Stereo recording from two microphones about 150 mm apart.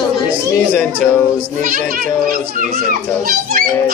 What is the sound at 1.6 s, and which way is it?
A child's voice, 70° right (ahead or behind).